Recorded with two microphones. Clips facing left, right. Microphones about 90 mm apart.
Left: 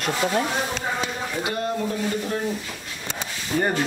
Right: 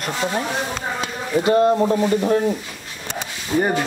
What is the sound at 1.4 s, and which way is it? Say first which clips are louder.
Speech: right 12 dB; 35° right (ahead or behind).